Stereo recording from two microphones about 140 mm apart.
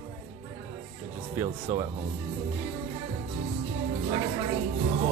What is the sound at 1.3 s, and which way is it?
Speech, 15° right (ahead or behind).